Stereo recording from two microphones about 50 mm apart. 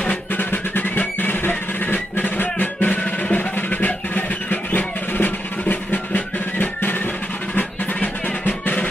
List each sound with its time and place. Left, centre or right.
0.0 s music: left
0.4 s music: left